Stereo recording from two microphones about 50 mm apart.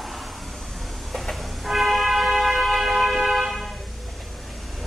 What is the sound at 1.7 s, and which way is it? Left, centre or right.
Vehicle, centre.